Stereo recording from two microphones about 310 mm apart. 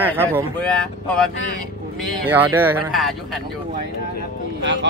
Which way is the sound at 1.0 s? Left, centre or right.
Centre.